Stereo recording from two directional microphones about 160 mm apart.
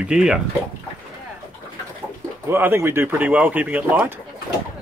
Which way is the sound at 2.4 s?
15° right (ahead or behind).